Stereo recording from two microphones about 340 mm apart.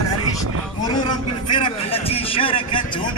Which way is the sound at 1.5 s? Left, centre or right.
Centre.